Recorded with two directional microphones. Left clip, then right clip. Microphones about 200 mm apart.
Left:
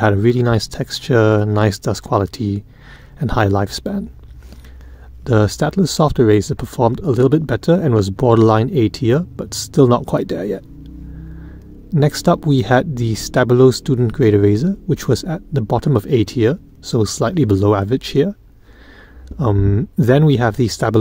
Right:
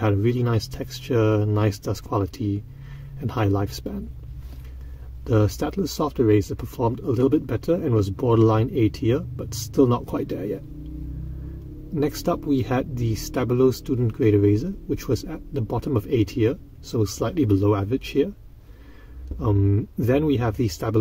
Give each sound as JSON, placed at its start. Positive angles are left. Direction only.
{"t": 0.0, "sound": "speech", "side_deg": 40}
{"t": 5.2, "sound": "speech", "side_deg": 40}
{"t": 11.9, "sound": "speech", "side_deg": 40}
{"t": 19.3, "sound": "speech", "side_deg": 40}